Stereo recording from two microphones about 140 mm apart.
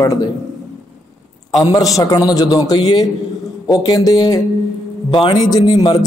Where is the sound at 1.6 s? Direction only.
25° left (ahead or behind).